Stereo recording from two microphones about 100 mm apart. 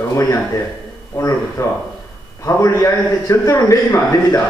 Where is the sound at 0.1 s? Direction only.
30° left (ahead or behind).